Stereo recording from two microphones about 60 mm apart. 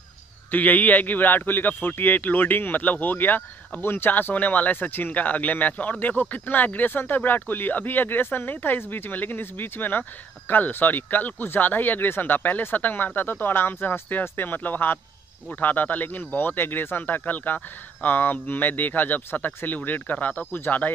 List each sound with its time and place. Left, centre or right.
0.5 s a man's voice: left